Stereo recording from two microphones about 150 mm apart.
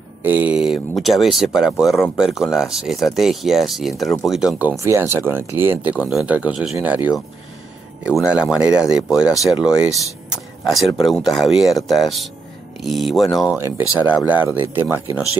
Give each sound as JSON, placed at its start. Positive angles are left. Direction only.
{"t": 0.2, "sound": "speech", "side_deg": -10}
{"t": 4.6, "sound": "speech", "side_deg": -15}
{"t": 8.2, "sound": "speech", "side_deg": -5}
{"t": 10.3, "sound": "a sound", "side_deg": 0}
{"t": 11.1, "sound": "speech", "side_deg": 0}
{"t": 13.6, "sound": "speech", "side_deg": -15}